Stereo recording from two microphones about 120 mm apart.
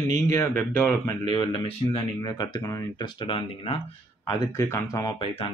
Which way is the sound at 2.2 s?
35° left (ahead or behind).